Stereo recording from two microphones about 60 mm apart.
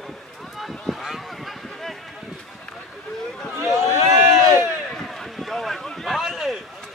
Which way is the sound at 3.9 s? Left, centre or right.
Right.